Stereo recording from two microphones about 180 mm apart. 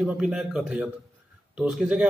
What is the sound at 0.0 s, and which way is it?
A man's voice, centre (ahead or behind).